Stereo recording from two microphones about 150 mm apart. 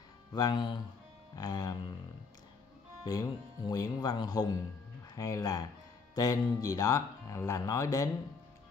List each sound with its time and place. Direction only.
0.3 s speech: 25° left (ahead or behind)
3.0 s speech: 25° left (ahead or behind)